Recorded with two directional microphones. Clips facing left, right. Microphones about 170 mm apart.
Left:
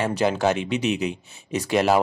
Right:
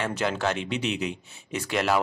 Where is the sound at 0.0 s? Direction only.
35° left (ahead or behind).